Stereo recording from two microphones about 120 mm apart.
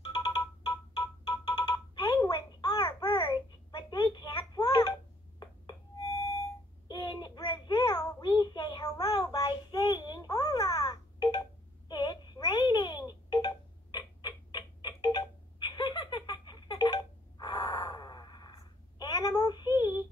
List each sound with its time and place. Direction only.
0.0 s ringtone: 35° left (ahead or behind)
2.2 s a sound: 30° left (ahead or behind)
5.4 s tuning fork: 30° left (ahead or behind)
6.9 s a sound: 40° left (ahead or behind)
9.3 s babbling: 35° left (ahead or behind)
11.9 s telephone: 40° left (ahead or behind)